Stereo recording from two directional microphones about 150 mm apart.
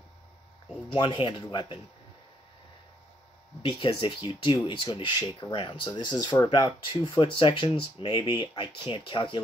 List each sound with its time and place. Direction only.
0.9 s speech: 35° left (ahead or behind)
3.6 s speech: 35° left (ahead or behind)